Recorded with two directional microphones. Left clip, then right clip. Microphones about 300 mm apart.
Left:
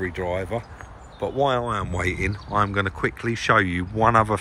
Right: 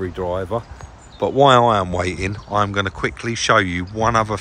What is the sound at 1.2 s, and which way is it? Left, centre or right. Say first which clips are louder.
Speech: right 9 dB; right.